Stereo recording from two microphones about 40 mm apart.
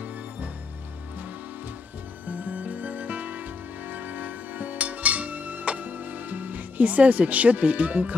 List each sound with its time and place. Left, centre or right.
2.2 s music: right